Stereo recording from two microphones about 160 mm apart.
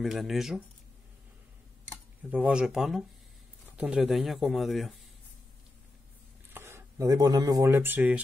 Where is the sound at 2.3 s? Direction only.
5° right (ahead or behind).